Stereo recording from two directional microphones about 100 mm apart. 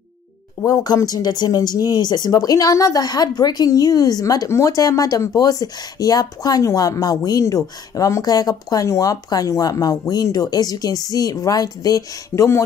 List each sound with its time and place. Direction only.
0.7 s speech: 40° left (ahead or behind)